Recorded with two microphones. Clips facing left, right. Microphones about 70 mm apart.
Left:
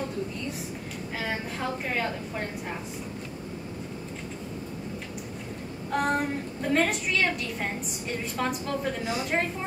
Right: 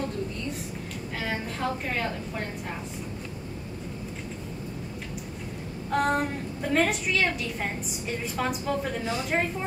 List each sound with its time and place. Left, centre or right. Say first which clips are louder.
1.2 s a woman's voice: right 2 dB; centre
5.9 s a woman's voice: right 1 dB; centre